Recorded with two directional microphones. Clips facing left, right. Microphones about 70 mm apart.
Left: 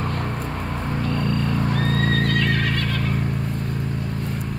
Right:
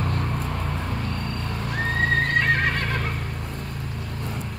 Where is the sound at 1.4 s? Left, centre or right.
Left.